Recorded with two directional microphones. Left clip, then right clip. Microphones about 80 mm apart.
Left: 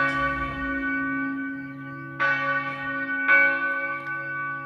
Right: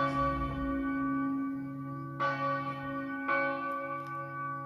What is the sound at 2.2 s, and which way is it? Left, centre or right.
Church bell, right.